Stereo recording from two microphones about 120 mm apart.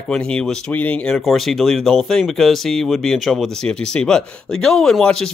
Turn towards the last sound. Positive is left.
turn(degrees=5)  # may be behind; listen again after turning